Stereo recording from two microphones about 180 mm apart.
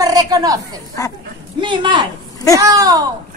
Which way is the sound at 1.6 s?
25° right (ahead or behind).